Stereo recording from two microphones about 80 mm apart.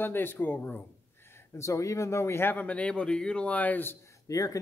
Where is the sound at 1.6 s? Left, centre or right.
Left.